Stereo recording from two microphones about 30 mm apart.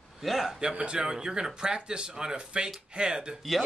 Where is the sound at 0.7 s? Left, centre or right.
Right.